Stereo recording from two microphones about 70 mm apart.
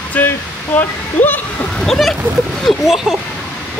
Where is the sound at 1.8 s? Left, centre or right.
Centre.